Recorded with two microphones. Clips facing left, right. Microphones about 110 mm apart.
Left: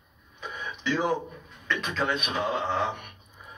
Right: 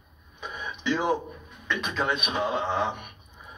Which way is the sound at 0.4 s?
15° right (ahead or behind).